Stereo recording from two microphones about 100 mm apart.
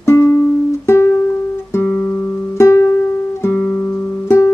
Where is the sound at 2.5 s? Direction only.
30° left (ahead or behind).